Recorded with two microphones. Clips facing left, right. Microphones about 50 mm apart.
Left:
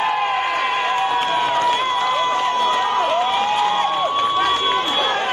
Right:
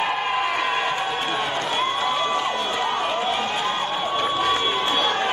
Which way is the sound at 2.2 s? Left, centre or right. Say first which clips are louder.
Left 5 dB; left.